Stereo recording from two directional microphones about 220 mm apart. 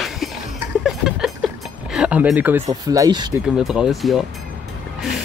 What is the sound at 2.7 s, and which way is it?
Speech, 15° right (ahead or behind).